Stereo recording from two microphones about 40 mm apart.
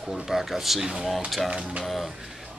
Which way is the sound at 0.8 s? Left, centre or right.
Centre.